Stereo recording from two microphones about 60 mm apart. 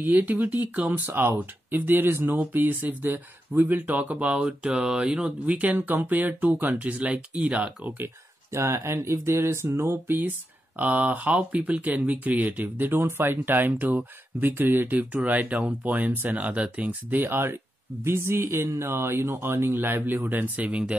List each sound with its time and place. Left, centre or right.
0.0 s speech: right
8.0 s speech: right; by 16.9 s centre
17.1 s speech: right